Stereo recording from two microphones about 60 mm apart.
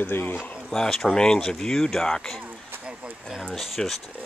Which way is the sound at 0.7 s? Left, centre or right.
Centre.